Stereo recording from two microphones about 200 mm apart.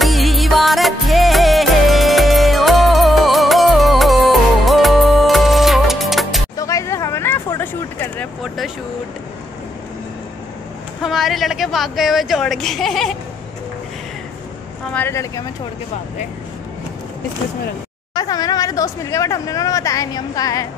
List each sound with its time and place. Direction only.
0.0 s music: centre (ahead or behind)
6.5 s a sound: 15° left (ahead or behind)
11.0 s a woman's voice: centre (ahead or behind)
15.0 s speech: 15° left (ahead or behind)
18.1 s speech: 20° left (ahead or behind)